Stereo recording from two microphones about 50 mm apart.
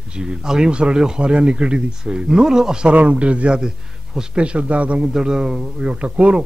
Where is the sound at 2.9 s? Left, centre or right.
Right.